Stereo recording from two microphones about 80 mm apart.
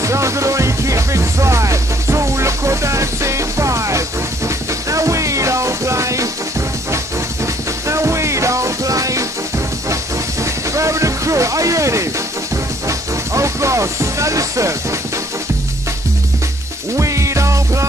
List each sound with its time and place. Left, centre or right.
0.0 s music: right
7.9 s music: right
10.4 s a sound: right
12.8 s music: right
16.9 s music: right